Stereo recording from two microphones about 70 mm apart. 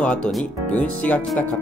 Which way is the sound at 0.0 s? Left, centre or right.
Centre.